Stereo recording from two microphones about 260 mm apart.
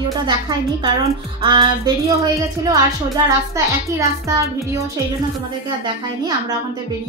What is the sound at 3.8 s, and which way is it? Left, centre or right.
Child singing, centre.